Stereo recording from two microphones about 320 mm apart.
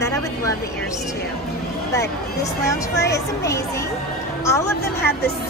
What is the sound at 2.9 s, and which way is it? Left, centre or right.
Speech, left.